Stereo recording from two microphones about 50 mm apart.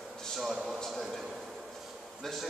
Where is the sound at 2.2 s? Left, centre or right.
Centre.